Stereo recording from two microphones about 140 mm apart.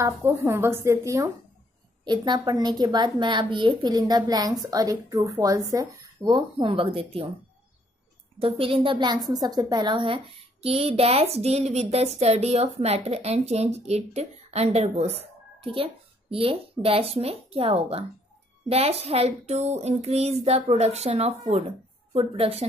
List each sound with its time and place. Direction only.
0.2 s a woman's voice: 20° right (ahead or behind)
6.3 s a woman's voice: 40° right (ahead or behind)
8.4 s a woman's voice: 40° right (ahead or behind)